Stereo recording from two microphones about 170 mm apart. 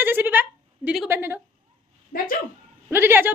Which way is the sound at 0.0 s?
10° right (ahead or behind).